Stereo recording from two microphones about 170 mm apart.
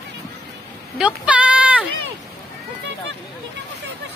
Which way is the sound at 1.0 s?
5° right (ahead or behind).